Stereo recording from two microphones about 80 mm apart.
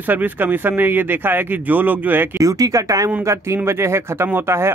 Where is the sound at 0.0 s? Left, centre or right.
Right.